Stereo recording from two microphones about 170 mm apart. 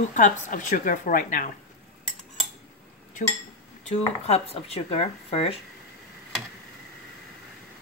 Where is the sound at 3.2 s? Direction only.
45° left (ahead or behind).